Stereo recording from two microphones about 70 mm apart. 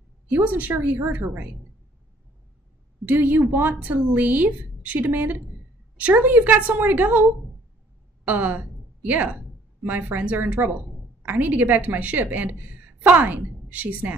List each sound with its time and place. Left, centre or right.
0.3 s speech: right
3.1 s speech: right
8.3 s a woman's voice: right